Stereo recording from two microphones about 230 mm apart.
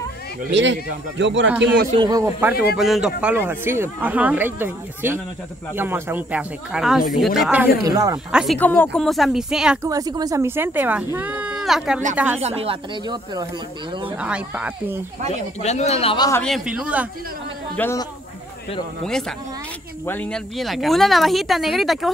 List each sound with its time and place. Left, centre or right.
0.5 s speech: right
2.0 s speech: centre
2.8 s speech: centre
7.8 s speech: centre
8.3 s speech: centre
8.5 s speech: centre
9.8 s speech: centre
12.4 s speech: right
14.1 s speech: centre
15.6 s speech: left
16.3 s speech: centre
17.7 s speech: centre
19.0 s speech: centre